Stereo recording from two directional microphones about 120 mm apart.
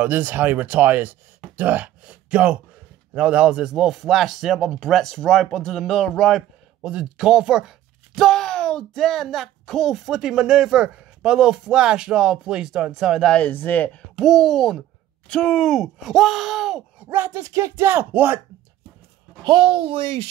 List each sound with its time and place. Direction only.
0.0 s speech: 15° right (ahead or behind)
17.1 s speech: 20° right (ahead or behind)
19.4 s speech: 45° right (ahead or behind)